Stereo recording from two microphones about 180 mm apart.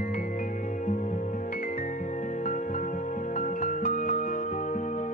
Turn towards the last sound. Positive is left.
turn(degrees=45)  # may be behind; listen again after turning